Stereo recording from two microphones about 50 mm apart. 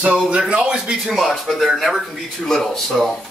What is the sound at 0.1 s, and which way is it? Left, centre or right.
Speech, centre.